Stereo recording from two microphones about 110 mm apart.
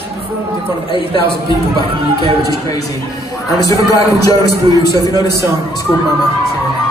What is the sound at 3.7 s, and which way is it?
Speech, 30° left (ahead or behind).